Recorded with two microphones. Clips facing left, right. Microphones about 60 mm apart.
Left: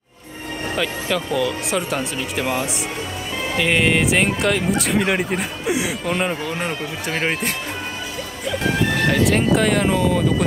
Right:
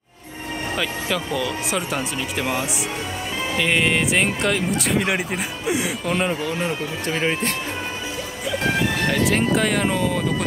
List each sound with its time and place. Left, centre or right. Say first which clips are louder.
0.7 s speech: left 3 dB; centre
6.6 s speech: even; left
9.1 s speech: left 2 dB; centre